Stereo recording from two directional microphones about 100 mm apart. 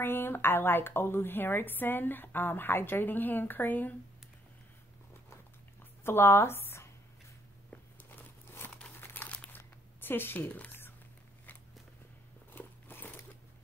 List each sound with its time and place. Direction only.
0.0 s a woman's voice: 20° left (ahead or behind)
6.0 s speech: 25° left (ahead or behind)
7.7 s a sound: 20° left (ahead or behind)
9.0 s crumpling: 20° left (ahead or behind)
9.6 s zipper: 20° left (ahead or behind)
12.5 s biting: 20° left (ahead or behind)